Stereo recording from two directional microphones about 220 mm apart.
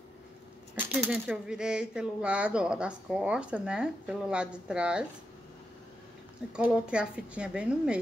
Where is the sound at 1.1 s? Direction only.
5° right (ahead or behind).